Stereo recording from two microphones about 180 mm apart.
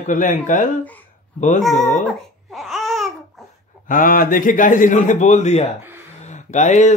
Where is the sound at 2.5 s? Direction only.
Centre (ahead or behind).